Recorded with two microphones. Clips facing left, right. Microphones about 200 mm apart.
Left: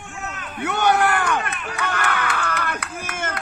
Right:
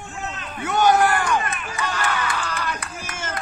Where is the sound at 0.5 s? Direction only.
65° left (ahead or behind).